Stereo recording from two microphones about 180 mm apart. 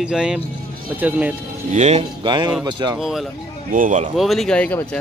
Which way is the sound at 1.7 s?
40° right (ahead or behind).